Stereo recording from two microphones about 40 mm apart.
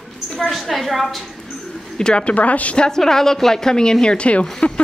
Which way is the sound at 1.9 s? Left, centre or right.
Left.